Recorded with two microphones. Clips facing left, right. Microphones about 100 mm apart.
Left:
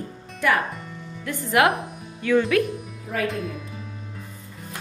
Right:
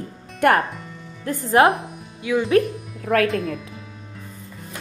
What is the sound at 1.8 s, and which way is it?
Music, centre (ahead or behind).